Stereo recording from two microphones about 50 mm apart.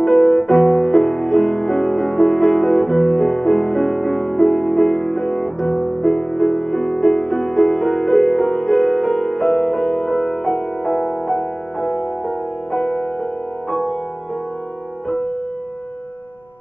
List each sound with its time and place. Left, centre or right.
0.0 s music: centre